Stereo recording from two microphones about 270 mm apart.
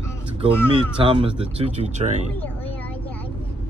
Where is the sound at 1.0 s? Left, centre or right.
Centre.